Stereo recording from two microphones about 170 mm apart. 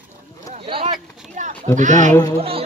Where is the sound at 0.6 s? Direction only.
30° right (ahead or behind).